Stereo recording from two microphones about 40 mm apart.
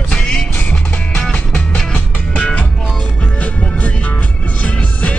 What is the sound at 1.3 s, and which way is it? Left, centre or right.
Music, left.